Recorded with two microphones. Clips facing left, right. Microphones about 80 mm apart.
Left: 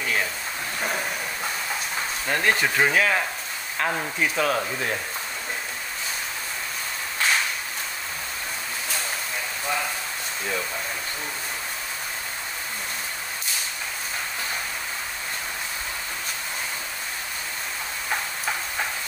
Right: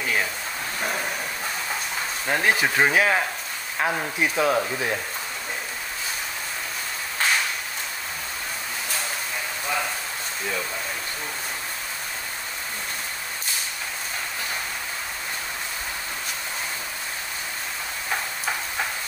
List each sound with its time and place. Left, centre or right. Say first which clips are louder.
2.2 s speech: right 1 dB; centre